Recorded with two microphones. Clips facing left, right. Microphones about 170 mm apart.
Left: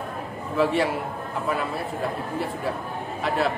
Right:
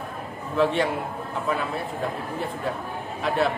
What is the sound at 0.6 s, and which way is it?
Speech, 5° left (ahead or behind).